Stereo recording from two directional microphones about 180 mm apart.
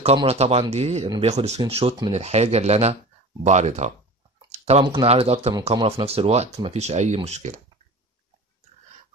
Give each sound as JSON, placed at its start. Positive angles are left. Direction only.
{"t": 0.0, "sound": "speech", "side_deg": -35}
{"t": 4.5, "sound": "a sound", "side_deg": -35}
{"t": 4.8, "sound": "speech", "side_deg": -30}